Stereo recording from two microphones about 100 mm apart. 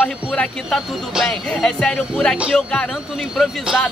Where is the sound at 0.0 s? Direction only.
10° left (ahead or behind).